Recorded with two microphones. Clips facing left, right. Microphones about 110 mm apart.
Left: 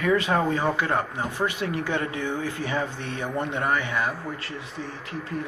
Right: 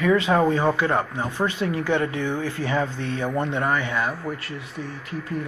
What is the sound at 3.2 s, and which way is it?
A man's voice, 15° right (ahead or behind).